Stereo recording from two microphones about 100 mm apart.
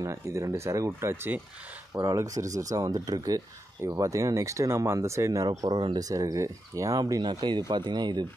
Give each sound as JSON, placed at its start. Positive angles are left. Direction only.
{"t": 0.0, "sound": "speech", "side_deg": -30}
{"t": 2.0, "sound": "speech", "side_deg": -35}